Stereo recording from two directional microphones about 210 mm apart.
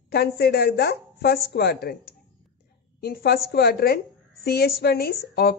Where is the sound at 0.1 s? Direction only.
50° left (ahead or behind).